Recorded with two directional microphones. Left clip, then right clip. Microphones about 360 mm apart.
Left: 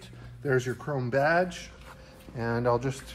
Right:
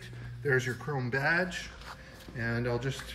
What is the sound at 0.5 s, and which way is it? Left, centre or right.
Speech, centre.